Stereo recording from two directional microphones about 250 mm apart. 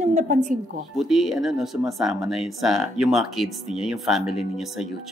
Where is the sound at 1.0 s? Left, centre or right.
Centre.